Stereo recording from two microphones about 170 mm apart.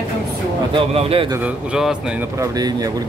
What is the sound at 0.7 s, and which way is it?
Speech, 35° right (ahead or behind).